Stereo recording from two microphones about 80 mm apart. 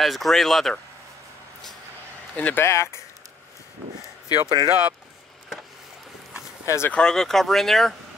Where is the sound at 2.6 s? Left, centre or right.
Left.